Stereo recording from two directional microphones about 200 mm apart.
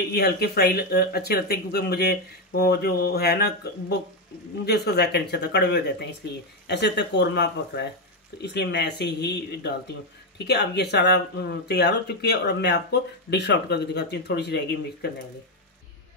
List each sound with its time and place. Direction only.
0.1 s speech: 55° left (ahead or behind)
4.6 s speech: 55° left (ahead or behind)